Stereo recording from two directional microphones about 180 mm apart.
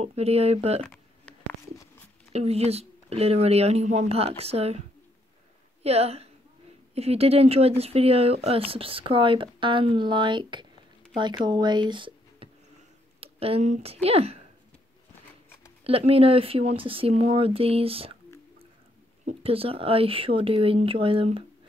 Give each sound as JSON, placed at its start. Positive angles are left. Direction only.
{"t": 0.0, "sound": "speech", "side_deg": -35}
{"t": 0.8, "sound": "a sound", "side_deg": 0}
{"t": 2.3, "sound": "a woman's voice", "side_deg": -35}
{"t": 15.8, "sound": "speech", "side_deg": -35}
{"t": 19.2, "sound": "speech", "side_deg": -30}